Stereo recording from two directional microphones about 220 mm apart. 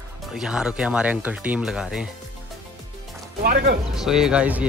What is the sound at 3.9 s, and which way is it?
Speech, centre (ahead or behind).